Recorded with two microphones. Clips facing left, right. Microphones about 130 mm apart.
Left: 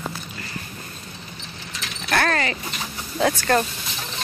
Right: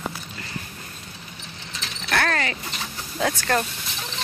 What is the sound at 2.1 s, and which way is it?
Speech, 5° left (ahead or behind).